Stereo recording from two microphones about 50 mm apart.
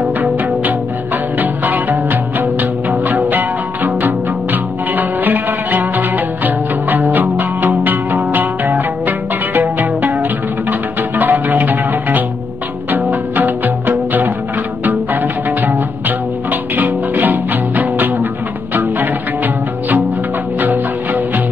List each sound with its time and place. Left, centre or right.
0.2 s music: right